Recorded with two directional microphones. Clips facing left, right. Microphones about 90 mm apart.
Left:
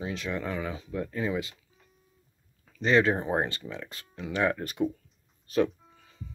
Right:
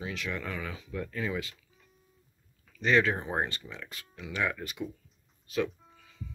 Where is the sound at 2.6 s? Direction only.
30° left (ahead or behind).